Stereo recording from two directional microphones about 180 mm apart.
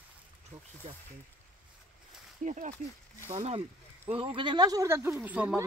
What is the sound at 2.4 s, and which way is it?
Speech, 45° right (ahead or behind).